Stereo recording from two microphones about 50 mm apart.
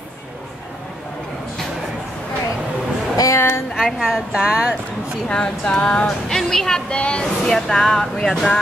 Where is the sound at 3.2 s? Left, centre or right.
Left.